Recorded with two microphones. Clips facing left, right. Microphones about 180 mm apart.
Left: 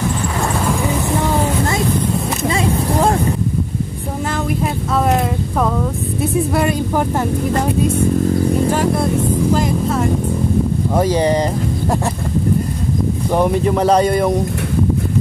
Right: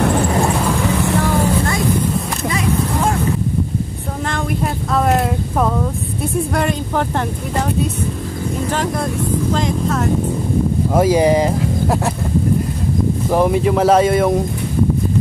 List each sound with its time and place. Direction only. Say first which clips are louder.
2.4 s vehicle: left 1 dB; 30° left (ahead or behind)
4.9 s a sound: right 1 dB; centre (ahead or behind)
6.5 s speech: left 2 dB; 5° left (ahead or behind)
8.6 s speech: left 4 dB; 10° left (ahead or behind)
11.0 s speech: right 2 dB; 10° right (ahead or behind)
13.3 s speech: even; centre (ahead or behind)